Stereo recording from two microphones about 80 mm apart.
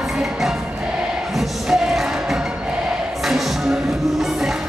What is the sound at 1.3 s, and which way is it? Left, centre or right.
Music, centre.